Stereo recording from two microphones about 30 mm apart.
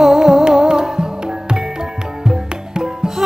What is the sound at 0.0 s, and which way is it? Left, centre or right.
Music, centre.